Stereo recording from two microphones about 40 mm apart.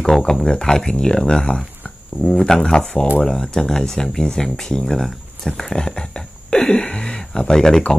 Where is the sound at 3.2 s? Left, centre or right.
Centre.